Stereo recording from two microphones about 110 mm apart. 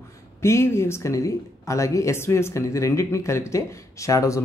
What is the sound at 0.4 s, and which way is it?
Speech, 25° left (ahead or behind).